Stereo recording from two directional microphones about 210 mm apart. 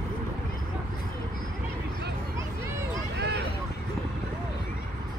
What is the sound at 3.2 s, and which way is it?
Vehicle, 50° right (ahead or behind).